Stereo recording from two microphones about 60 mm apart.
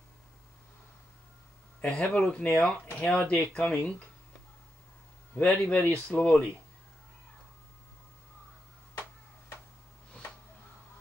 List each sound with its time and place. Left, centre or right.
1.8 s speech: centre
5.4 s speech: left